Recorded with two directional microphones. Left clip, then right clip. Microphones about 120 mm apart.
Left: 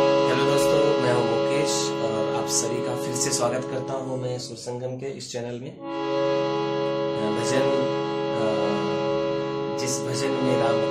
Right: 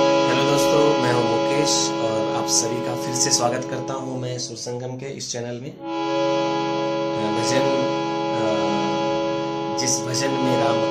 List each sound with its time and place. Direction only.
0.0 s music: 15° right (ahead or behind)
3.3 s speech: 30° right (ahead or behind)
6.0 s music: 20° right (ahead or behind)
10.4 s music: 20° right (ahead or behind)